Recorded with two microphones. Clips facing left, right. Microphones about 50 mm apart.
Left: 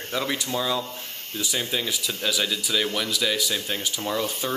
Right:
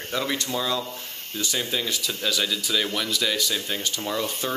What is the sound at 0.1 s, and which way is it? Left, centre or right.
Speech, centre.